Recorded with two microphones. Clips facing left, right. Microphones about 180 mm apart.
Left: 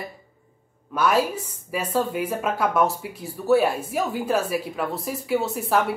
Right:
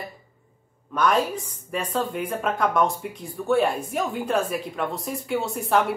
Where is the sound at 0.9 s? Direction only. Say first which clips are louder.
Left 1 dB; 5° left (ahead or behind).